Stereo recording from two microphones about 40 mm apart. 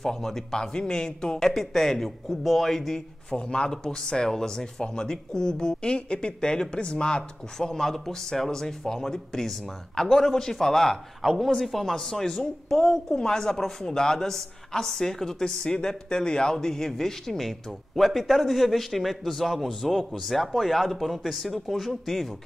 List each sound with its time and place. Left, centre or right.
0.0 s speech: centre
1.5 s a man's voice: centre
3.3 s speech: left
7.5 s a man's voice: centre